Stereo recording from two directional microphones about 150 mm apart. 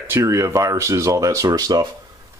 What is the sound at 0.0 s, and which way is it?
Speech, 20° right (ahead or behind).